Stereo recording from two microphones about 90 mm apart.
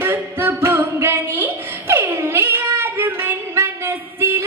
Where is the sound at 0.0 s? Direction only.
25° right (ahead or behind).